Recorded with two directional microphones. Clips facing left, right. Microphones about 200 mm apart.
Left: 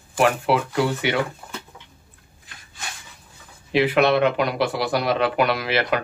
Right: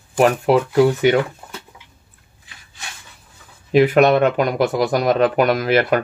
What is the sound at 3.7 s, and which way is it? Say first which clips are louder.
Speech: right 5 dB; 45° right (ahead or behind).